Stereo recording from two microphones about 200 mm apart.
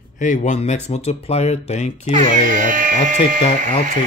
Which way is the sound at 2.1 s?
40° right (ahead or behind).